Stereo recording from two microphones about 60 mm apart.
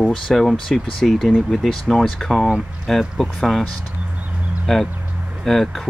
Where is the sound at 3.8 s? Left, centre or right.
Right.